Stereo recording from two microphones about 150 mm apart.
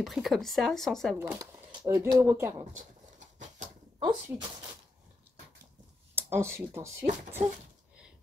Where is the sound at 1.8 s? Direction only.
25° right (ahead or behind).